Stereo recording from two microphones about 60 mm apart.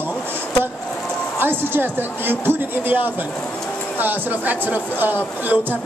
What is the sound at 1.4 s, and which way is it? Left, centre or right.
A woman's voice, right.